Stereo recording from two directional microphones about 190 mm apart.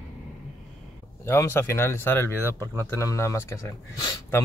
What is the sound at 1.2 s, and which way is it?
Speech, 15° left (ahead or behind).